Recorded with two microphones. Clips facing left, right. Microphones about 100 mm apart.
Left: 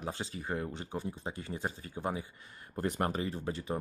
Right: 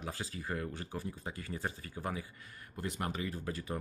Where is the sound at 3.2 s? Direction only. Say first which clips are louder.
Left 3 dB; 25° left (ahead or behind).